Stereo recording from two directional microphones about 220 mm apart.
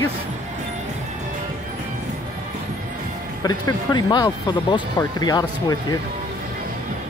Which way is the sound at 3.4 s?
15° left (ahead or behind).